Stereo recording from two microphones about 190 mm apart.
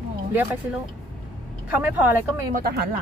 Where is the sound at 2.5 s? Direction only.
55° right (ahead or behind).